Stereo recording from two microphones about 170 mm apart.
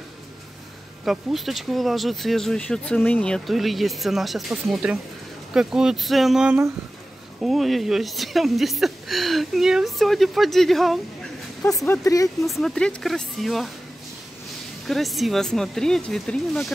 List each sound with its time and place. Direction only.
1.0 s speech: centre (ahead or behind)
11.9 s speech: 20° left (ahead or behind)
12.4 s speech: centre (ahead or behind)
14.9 s speech: centre (ahead or behind)